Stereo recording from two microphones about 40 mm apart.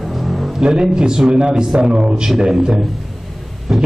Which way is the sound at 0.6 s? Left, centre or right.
Centre.